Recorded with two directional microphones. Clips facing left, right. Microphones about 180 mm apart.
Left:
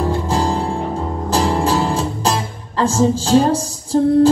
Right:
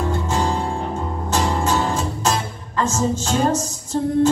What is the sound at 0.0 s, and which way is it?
Music, 30° left (ahead or behind).